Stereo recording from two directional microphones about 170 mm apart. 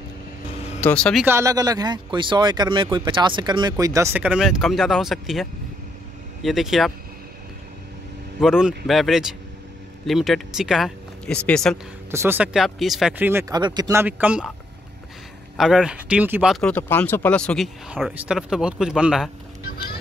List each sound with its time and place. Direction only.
0.7 s speech: 10° left (ahead or behind)
1.2 s speech: 15° right (ahead or behind)
8.4 s speech: 5° right (ahead or behind)
12.1 s speech: 15° right (ahead or behind)
12.5 s speech: centre (ahead or behind)
13.2 s speech: 15° right (ahead or behind)
13.6 s speech: 25° right (ahead or behind)
14.0 s speech: 10° right (ahead or behind)
15.5 s speech: centre (ahead or behind)
17.8 s speech: 5° right (ahead or behind)
19.6 s vehicle: 65° left (ahead or behind)